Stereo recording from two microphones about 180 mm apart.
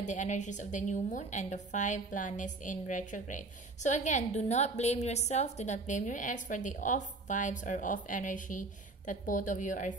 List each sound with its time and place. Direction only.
0.0 s a woman's voice: 40° left (ahead or behind)